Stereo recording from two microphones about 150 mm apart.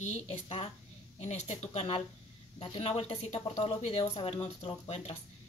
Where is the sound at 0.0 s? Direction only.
50° left (ahead or behind).